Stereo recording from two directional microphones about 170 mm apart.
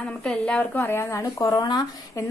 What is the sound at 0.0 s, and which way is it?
Speech, 5° left (ahead or behind).